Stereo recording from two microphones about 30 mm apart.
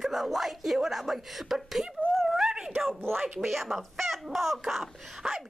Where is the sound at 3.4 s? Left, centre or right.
Centre.